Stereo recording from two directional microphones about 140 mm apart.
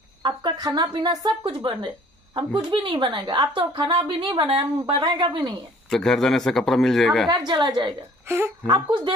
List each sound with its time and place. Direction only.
0.2 s a woman's voice: 30° right (ahead or behind)
5.9 s speech: 5° left (ahead or behind)
7.2 s a woman's voice: 30° right (ahead or behind)
8.3 s speech: 15° right (ahead or behind)
8.6 s a woman's voice: 35° right (ahead or behind)